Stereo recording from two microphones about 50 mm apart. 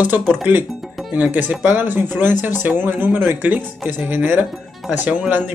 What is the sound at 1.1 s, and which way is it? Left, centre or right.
Speech, right.